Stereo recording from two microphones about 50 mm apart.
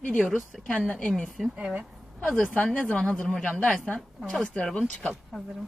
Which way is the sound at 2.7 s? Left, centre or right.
Left.